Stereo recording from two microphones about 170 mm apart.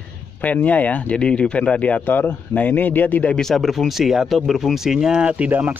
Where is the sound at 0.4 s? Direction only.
10° left (ahead or behind).